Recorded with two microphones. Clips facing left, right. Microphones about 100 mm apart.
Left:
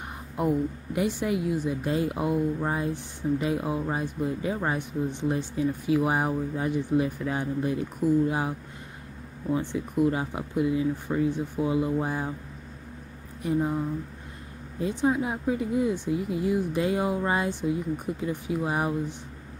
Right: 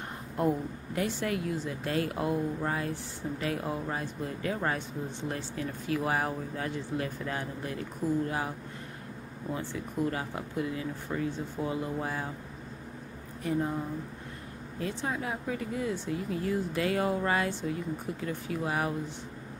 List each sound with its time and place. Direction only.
0.9 s speech: 15° left (ahead or behind)
13.4 s speech: 15° left (ahead or behind)
14.8 s speech: 15° left (ahead or behind)